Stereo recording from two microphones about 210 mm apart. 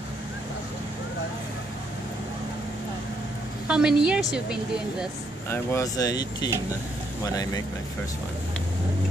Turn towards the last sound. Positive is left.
turn(degrees=15)  # may be behind; listen again after turning